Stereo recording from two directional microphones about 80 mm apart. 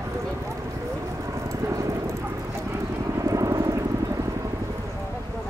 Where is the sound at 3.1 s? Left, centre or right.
Right.